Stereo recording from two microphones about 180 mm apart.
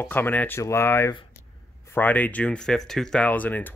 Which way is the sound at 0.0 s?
10° left (ahead or behind).